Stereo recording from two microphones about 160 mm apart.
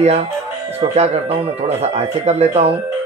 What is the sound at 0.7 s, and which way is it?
Speech, 40° right (ahead or behind).